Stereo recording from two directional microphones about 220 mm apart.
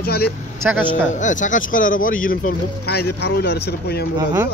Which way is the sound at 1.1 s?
35° left (ahead or behind).